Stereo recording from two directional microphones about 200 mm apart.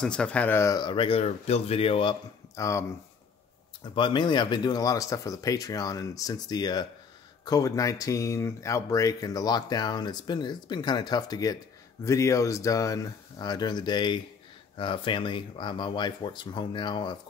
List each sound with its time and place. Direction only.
0.0 s speech: 5° left (ahead or behind)
3.9 s speech: 25° left (ahead or behind)